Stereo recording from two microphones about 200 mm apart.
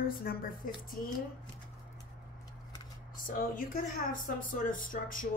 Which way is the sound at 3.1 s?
45° left (ahead or behind).